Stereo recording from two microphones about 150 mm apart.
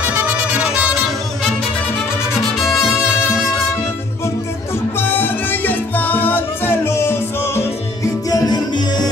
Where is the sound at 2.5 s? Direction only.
5° right (ahead or behind).